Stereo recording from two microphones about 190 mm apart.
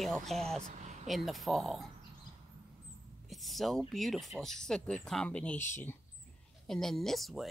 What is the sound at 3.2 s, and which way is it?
Speech, centre (ahead or behind).